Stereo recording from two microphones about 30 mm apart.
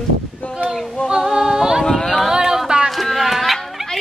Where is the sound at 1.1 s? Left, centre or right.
Centre.